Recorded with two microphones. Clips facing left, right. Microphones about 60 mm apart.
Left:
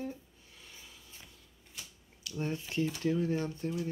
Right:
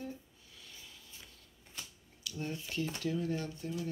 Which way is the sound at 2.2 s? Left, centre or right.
Left.